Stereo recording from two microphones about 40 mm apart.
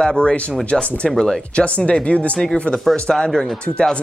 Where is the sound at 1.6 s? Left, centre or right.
Left.